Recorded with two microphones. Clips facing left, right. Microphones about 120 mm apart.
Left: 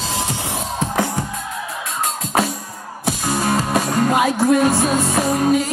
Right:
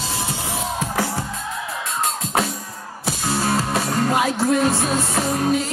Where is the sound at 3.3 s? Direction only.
15° left (ahead or behind).